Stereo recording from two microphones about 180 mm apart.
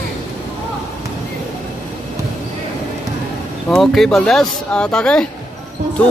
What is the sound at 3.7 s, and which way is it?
Speech, centre (ahead or behind).